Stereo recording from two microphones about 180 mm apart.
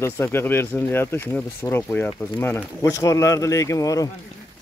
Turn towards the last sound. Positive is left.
turn(degrees=20)  # may be behind; listen again after turning